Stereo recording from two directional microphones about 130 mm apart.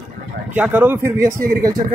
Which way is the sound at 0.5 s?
10° right (ahead or behind).